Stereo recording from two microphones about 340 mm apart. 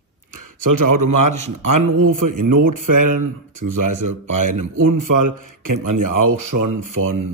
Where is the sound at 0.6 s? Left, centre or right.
Right.